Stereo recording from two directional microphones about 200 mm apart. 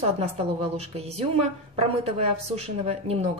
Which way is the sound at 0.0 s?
30° right (ahead or behind).